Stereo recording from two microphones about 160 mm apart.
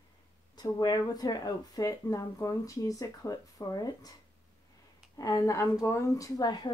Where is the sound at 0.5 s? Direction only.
25° left (ahead or behind).